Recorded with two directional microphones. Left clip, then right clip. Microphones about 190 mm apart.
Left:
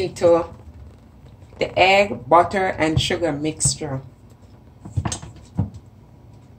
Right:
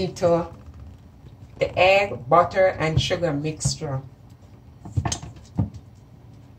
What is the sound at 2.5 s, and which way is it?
Speech, 55° left (ahead or behind).